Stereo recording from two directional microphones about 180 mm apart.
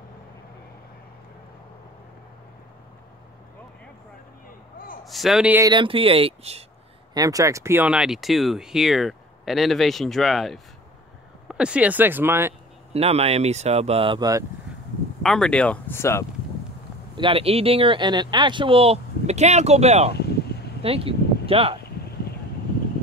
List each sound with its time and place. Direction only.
5.0 s speech: centre (ahead or behind)
5.6 s speech: 25° right (ahead or behind)
7.2 s speech: 20° right (ahead or behind)
12.9 s speech: 35° right (ahead or behind)
15.2 s speech: 5° left (ahead or behind)
17.2 s speech: 30° right (ahead or behind)